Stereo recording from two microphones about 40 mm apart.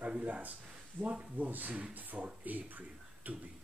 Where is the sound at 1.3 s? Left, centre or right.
Right.